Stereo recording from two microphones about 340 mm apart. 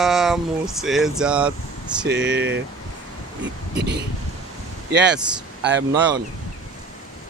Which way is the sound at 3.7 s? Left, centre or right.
Right.